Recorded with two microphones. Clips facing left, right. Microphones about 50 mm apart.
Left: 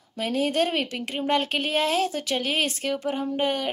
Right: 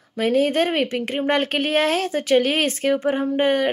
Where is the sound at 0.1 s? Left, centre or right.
Right.